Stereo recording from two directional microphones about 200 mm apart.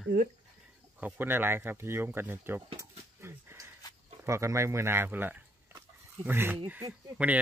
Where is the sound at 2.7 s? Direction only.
15° right (ahead or behind).